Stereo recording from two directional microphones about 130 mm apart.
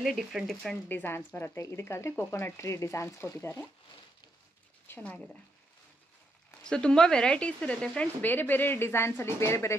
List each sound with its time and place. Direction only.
0.0 s speech: centre (ahead or behind); by 3.6 s 20° left (ahead or behind)
4.8 s speech: 15° left (ahead or behind)
6.6 s speech: 5° left (ahead or behind)